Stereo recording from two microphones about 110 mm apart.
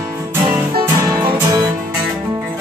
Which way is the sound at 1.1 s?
25° right (ahead or behind).